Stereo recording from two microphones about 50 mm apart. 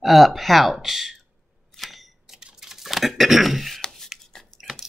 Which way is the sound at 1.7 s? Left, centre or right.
Centre.